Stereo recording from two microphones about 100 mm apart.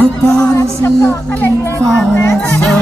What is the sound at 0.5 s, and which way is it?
A woman's voice, 30° left (ahead or behind).